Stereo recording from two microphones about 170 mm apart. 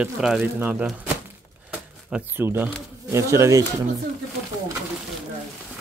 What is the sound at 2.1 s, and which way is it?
Speech, 10° right (ahead or behind).